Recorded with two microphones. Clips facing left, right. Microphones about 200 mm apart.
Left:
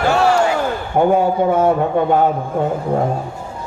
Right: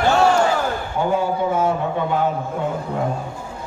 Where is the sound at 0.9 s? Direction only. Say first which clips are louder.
Left 8 dB; 60° left (ahead or behind).